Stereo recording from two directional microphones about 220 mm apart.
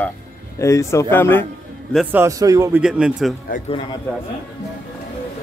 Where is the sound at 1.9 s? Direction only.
5° right (ahead or behind).